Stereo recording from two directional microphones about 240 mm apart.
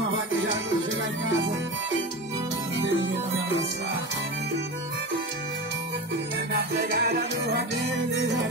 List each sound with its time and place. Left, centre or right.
6.8 s music: right